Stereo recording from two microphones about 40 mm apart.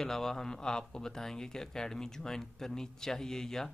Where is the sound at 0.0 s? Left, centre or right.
Centre.